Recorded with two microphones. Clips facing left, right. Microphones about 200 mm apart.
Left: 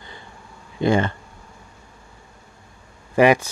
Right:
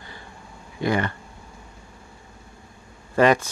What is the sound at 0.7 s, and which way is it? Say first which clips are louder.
Speech: left 4 dB; 25° left (ahead or behind).